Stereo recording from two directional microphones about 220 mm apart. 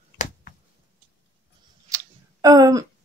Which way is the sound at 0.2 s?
40° left (ahead or behind).